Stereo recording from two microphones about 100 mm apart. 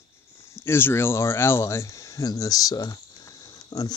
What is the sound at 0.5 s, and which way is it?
Speech, 25° left (ahead or behind).